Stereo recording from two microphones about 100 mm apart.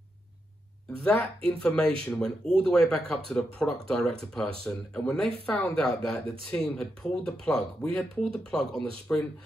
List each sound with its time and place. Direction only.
1.0 s speech: 10° left (ahead or behind)